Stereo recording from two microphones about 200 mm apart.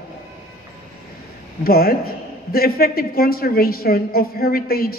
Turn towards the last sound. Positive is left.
turn(degrees=50)  # may be behind; listen again after turning